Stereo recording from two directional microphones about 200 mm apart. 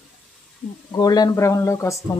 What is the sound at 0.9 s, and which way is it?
Speech, 20° left (ahead or behind).